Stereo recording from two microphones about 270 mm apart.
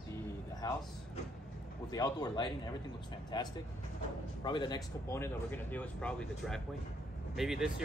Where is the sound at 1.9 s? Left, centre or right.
Centre.